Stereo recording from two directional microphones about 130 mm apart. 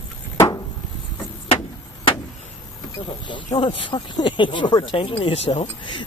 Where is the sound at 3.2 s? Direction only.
35° left (ahead or behind); by 5.9 s 55° left (ahead or behind).